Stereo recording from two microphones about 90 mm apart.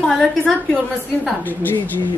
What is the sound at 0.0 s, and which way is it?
Speech, 5° left (ahead or behind).